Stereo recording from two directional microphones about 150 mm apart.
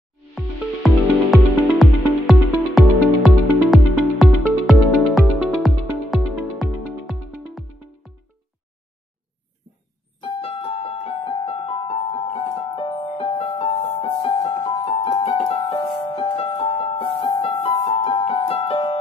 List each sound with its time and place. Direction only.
0.3 s music: centre (ahead or behind)
10.2 s keyboard: 40° left (ahead or behind)
12.7 s music: 35° left (ahead or behind)
14.1 s piano: 30° left (ahead or behind)
15.7 s music: 30° left (ahead or behind)
17.1 s piano: 40° left (ahead or behind)